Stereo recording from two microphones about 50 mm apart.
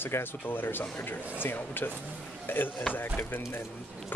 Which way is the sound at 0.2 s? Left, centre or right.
Left.